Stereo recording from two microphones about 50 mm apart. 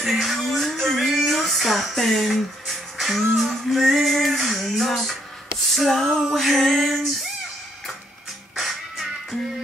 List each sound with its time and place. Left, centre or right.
0.0 s speech: centre
5.7 s a sound: centre
6.0 s speech: centre
8.5 s music: centre